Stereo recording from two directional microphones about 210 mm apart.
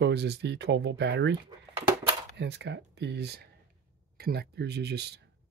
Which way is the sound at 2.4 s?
55° right (ahead or behind).